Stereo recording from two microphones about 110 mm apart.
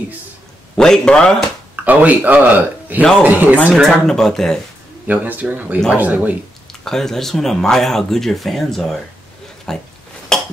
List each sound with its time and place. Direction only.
0.7 s speech: 5° left (ahead or behind)
1.9 s speech: 15° right (ahead or behind)
3.7 s speech: 5° left (ahead or behind)
5.0 s speech: 15° right (ahead or behind)
6.7 s speech: 5° left (ahead or behind)
10.3 s a sound: 5° left (ahead or behind)